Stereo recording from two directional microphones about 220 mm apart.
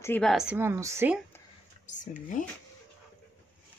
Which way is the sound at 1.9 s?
35° left (ahead or behind).